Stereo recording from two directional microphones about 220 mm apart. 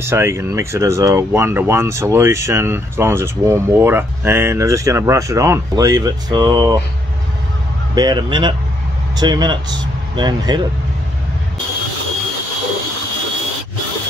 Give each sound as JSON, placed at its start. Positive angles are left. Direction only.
{"t": 0.0, "sound": "speech", "side_deg": -10}
{"t": 7.9, "sound": "speech", "side_deg": -20}